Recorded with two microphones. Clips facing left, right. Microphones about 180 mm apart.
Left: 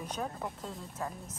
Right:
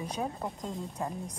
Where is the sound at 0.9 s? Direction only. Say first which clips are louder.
Right 4 dB; 15° right (ahead or behind).